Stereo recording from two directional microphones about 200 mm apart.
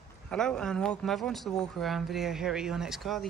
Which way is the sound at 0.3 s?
5° left (ahead or behind).